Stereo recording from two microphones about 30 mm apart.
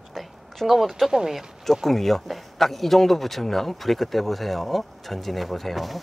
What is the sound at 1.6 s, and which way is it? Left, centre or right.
Speech, centre.